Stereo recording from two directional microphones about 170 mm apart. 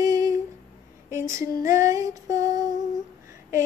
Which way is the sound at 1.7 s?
20° right (ahead or behind).